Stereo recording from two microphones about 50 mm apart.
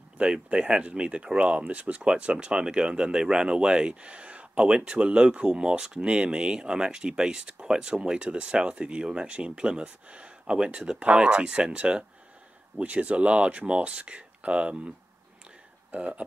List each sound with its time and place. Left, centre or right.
0.2 s speech: right